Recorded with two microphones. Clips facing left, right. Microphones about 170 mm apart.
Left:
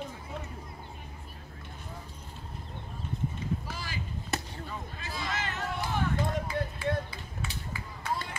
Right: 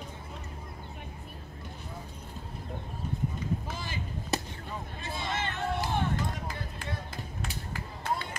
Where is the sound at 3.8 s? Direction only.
20° right (ahead or behind).